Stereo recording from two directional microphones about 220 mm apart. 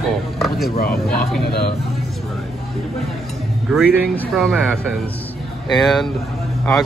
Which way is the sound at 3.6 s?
Centre (ahead or behind).